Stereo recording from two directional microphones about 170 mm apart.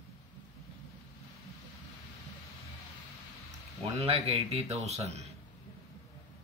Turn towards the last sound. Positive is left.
turn(degrees=-40)  # may be behind; listen again after turning